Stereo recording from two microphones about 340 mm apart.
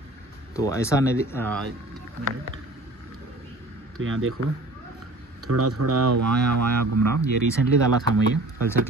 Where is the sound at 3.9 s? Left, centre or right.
Right.